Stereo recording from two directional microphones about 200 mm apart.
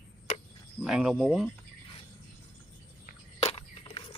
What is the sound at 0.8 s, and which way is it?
Speech, 5° right (ahead or behind).